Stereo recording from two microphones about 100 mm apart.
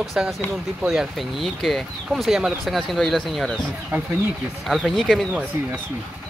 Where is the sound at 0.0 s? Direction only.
Centre (ahead or behind).